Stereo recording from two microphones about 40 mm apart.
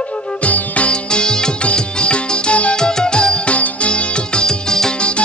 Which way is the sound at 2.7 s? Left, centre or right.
Centre.